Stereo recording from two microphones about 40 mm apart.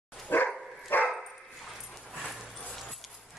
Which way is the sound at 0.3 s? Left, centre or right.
Left.